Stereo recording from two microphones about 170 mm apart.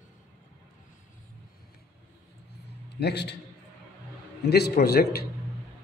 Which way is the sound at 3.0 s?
75° left (ahead or behind).